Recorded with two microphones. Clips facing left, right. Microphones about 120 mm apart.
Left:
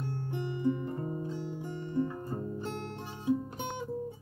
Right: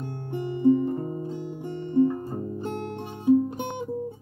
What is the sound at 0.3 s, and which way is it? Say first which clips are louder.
Music: right 11 dB; 45° right (ahead or behind).